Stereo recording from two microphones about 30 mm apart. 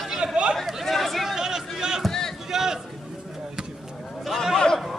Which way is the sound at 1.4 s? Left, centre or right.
Right.